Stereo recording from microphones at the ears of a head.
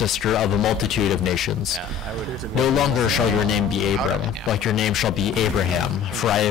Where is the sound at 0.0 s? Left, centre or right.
Left.